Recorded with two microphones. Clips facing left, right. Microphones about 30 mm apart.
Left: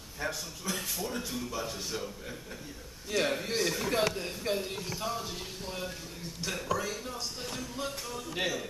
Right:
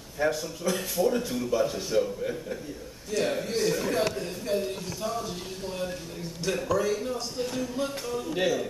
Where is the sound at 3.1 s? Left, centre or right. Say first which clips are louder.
Right 3 dB; centre.